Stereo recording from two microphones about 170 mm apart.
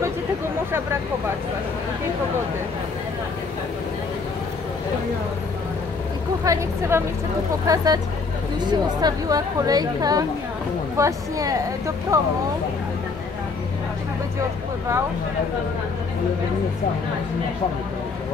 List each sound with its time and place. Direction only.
6.4 s a woman's voice: 20° right (ahead or behind)